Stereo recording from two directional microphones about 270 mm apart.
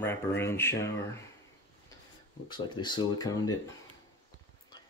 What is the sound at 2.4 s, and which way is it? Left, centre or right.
Speech, centre.